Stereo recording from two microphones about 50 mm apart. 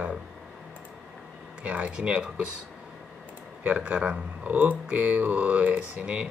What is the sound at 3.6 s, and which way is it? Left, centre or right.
Speech, right.